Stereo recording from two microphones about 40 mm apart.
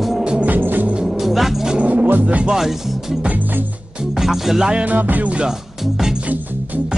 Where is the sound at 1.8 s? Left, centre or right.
Right.